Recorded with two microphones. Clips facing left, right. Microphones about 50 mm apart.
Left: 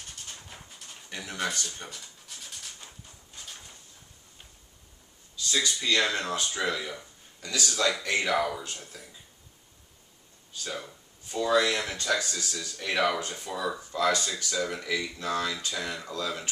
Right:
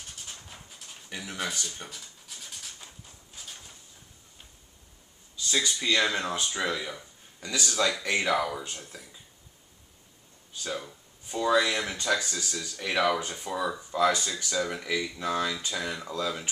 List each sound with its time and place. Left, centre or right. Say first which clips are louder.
0.0 s a sound: even; centre
1.7 s pant: even; centre
3.3 s a sound: even; centre
5.7 s speech: right 1 dB; centre
6.6 s speech: even; centre
10.6 s speech: right 2 dB; centre